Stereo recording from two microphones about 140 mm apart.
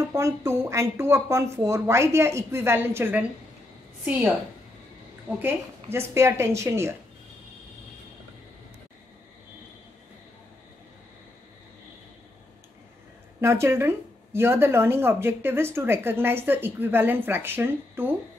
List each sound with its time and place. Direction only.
0.1 s speech: 20° right (ahead or behind)
5.4 s speech: 20° right (ahead or behind)
13.4 s speech: 20° right (ahead or behind)